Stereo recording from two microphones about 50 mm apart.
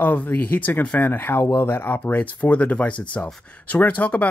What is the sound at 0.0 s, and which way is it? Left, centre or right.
Speech, left.